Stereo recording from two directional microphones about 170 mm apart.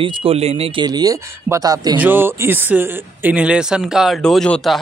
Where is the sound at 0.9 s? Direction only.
20° right (ahead or behind).